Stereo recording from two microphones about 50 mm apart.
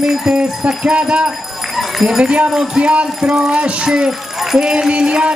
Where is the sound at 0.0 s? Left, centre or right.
Centre.